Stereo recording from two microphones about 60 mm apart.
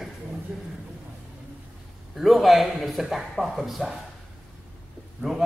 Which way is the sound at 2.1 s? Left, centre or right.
Centre.